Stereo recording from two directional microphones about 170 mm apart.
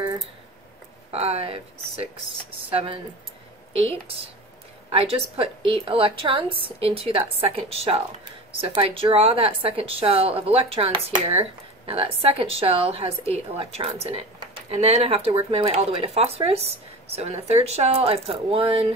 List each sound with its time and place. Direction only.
1.1 s a woman's voice: 35° right (ahead or behind)
2.7 s a woman's voice: 30° right (ahead or behind)